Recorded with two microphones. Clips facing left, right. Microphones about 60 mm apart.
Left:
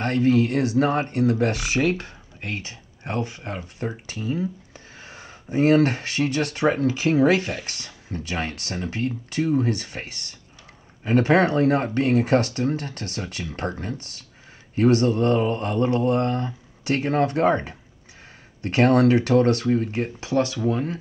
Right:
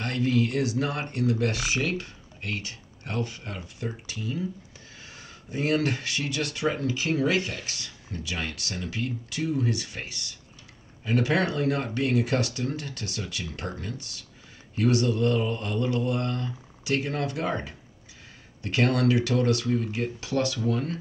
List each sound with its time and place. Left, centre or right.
0.0 s speech: left
1.6 s speech: left